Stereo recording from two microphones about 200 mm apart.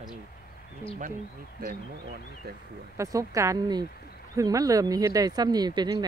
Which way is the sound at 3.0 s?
15° right (ahead or behind).